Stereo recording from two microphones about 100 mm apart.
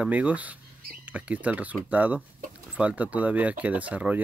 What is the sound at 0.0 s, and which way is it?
Speech, 15° right (ahead or behind).